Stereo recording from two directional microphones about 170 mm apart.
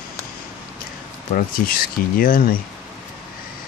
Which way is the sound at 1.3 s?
60° left (ahead or behind).